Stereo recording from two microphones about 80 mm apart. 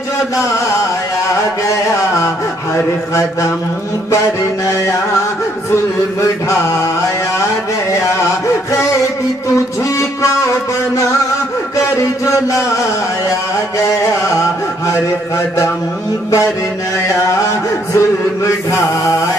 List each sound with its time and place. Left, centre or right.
1.3 s a sound: left
9.9 s music: left
11.7 s music: left
13.8 s music: left
15.3 s chant: left
17.9 s chant: left